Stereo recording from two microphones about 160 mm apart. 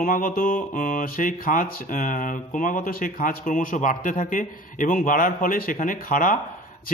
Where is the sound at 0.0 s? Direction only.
60° left (ahead or behind).